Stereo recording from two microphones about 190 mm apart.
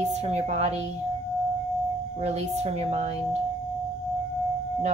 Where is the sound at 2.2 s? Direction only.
35° right (ahead or behind).